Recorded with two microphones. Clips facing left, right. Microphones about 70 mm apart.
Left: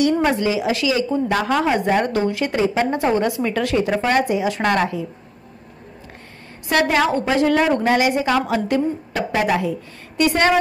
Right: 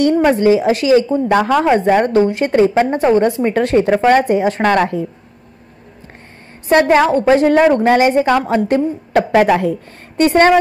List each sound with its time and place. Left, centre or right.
0.4 s a woman's voice: right
2.5 s a woman's voice: right
2.8 s a woman's voice: right
6.7 s a woman's voice: right